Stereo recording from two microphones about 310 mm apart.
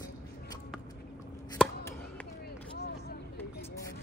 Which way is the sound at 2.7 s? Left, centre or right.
Left.